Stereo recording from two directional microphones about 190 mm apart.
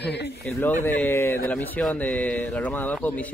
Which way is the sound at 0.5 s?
10° left (ahead or behind).